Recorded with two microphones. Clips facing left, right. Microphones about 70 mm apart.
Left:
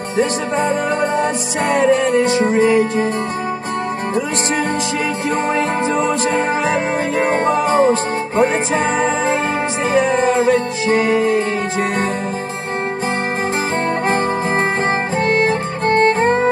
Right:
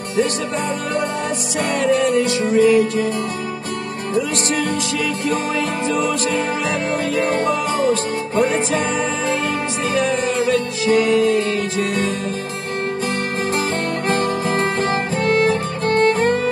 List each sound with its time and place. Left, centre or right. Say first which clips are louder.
1.7 s music: left 3 dB; left
7.2 s music: left 3 dB; left
9.9 s music: left 5 dB; left
14.0 s music: left 2 dB; left